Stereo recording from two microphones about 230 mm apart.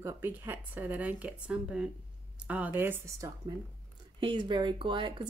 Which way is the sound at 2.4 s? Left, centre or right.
Centre.